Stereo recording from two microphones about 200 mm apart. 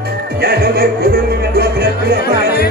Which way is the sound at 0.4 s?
55° right (ahead or behind).